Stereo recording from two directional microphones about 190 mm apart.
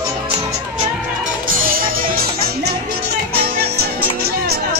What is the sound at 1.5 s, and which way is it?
Music, 50° right (ahead or behind).